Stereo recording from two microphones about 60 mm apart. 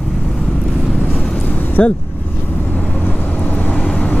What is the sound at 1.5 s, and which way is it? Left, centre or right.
Vehicle, left.